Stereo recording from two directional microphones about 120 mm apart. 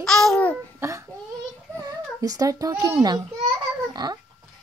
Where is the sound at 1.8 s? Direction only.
30° right (ahead or behind).